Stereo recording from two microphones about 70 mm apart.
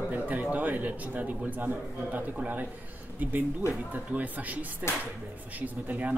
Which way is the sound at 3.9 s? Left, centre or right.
Right.